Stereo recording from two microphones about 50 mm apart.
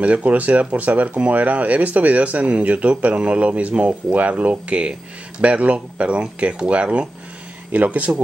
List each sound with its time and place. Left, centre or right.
0.0 s speech: right